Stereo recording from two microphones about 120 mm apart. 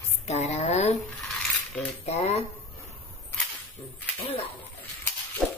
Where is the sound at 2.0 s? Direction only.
60° left (ahead or behind).